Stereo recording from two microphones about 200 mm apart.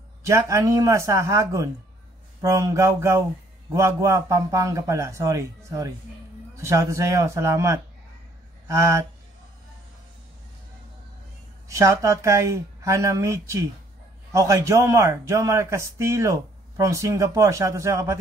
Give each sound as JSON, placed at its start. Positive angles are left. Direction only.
{"t": 0.2, "sound": "a man's voice", "side_deg": -15}
{"t": 11.7, "sound": "a man's voice", "side_deg": -15}